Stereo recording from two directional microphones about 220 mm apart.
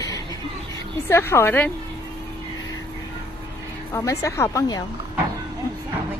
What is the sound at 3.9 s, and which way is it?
Speech, 15° left (ahead or behind).